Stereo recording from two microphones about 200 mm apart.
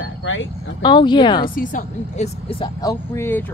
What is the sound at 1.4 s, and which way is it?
Speech, 45° left (ahead or behind).